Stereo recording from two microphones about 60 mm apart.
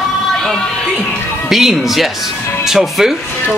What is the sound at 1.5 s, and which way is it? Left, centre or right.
Speech, centre.